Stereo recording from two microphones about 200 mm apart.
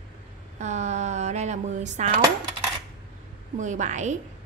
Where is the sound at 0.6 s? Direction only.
35° right (ahead or behind).